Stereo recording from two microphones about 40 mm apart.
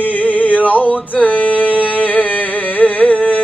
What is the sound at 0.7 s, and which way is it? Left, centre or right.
Male singing, left.